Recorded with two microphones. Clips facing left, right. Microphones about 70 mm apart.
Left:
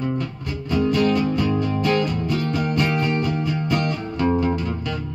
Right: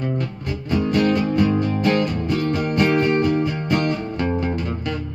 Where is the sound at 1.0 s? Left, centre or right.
Right.